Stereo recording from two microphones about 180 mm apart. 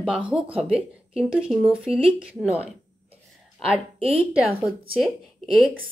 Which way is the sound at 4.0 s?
30° right (ahead or behind).